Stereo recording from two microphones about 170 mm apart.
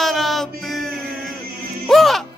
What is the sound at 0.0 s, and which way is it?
Music, centre (ahead or behind).